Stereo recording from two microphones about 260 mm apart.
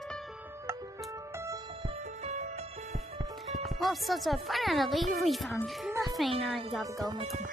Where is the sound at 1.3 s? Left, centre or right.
Centre.